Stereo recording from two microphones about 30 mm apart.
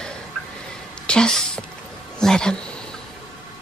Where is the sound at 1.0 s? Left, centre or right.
Left.